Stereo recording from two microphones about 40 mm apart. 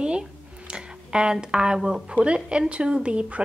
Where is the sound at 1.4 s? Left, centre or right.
Right.